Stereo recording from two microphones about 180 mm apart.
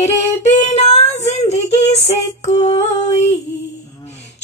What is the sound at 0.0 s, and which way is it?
Female singing, 40° left (ahead or behind).